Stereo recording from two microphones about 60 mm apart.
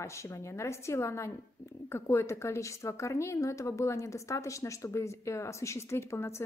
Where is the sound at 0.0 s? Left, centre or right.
Left.